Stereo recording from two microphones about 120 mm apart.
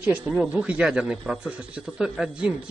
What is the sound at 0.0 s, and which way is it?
Speech, 10° right (ahead or behind).